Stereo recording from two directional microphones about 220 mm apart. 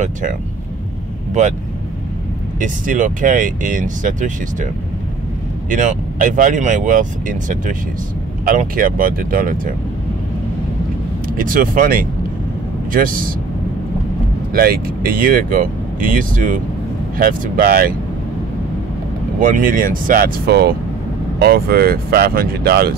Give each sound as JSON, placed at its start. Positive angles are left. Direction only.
{"t": 0.0, "sound": "speech", "side_deg": -35}
{"t": 2.6, "sound": "speech", "side_deg": -35}
{"t": 5.7, "sound": "speech", "side_deg": -35}
{"t": 11.3, "sound": "speech", "side_deg": -40}
{"t": 14.5, "sound": "speech", "side_deg": -40}
{"t": 19.4, "sound": "speech", "side_deg": -40}